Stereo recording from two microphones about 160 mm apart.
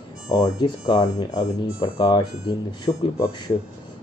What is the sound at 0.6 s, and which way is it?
Speech, 25° left (ahead or behind).